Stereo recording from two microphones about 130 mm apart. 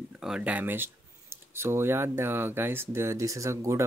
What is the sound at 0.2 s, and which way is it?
Speech, 5° right (ahead or behind).